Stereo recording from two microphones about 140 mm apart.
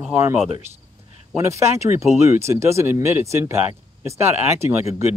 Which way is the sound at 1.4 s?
20° right (ahead or behind).